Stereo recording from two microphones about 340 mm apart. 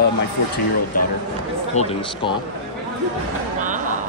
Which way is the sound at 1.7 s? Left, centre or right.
Centre.